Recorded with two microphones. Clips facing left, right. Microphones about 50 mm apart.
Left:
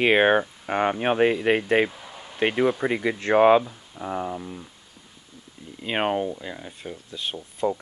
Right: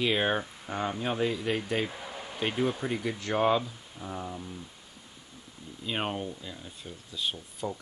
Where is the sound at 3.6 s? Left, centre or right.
Left.